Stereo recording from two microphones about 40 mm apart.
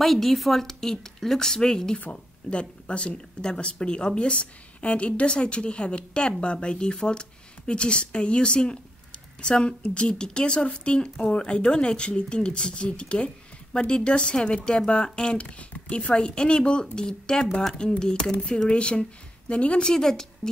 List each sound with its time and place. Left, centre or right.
0.0 s a woman's voice: centre
2.5 s speech: left
19.9 s a woman's voice: centre